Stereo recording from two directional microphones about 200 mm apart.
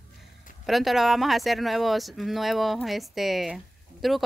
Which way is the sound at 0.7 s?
Centre (ahead or behind).